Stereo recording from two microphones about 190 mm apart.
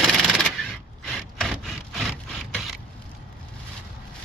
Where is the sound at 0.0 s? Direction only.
5° right (ahead or behind).